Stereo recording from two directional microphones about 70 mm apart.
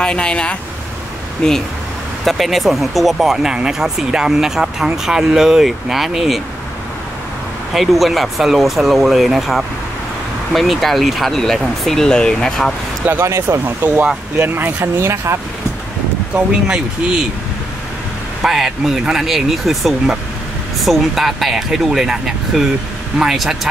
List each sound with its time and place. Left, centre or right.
0.0 s speech: centre
2.2 s speech: centre
7.7 s speech: centre
13.2 s speech: right
16.3 s speech: centre
18.4 s speech: centre